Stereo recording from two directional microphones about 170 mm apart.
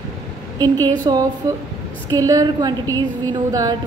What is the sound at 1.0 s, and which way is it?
A woman's voice, 20° right (ahead or behind).